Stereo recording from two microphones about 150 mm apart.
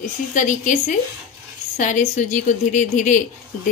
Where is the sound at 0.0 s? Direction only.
60° left (ahead or behind).